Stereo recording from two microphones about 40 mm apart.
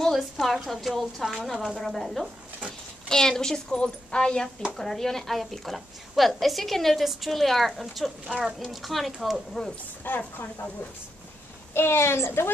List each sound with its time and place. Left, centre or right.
0.1 s a woman's voice: centre
3.1 s a woman's voice: centre
10.1 s speech: left
11.7 s a woman's voice: left